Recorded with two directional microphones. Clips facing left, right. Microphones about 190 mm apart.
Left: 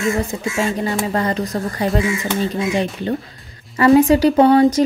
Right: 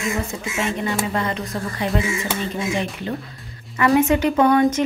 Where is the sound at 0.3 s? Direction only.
30° left (ahead or behind).